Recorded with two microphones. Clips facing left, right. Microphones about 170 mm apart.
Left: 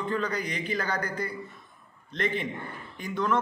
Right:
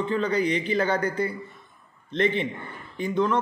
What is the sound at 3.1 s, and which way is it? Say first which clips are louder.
Speech: right 4 dB; 20° right (ahead or behind).